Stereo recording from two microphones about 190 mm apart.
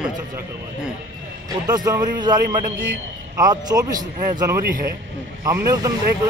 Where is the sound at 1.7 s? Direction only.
20° right (ahead or behind).